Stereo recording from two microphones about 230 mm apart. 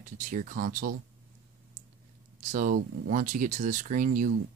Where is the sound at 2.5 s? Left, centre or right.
Right.